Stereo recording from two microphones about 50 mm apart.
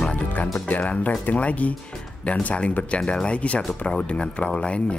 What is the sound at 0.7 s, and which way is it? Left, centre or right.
Speech, left.